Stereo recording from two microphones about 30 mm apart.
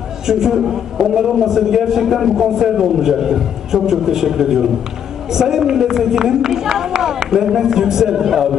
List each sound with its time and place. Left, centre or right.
0.3 s a man's voice: centre